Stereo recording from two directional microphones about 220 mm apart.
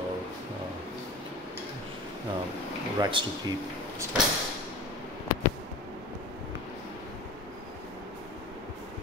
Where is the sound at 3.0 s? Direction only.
20° right (ahead or behind).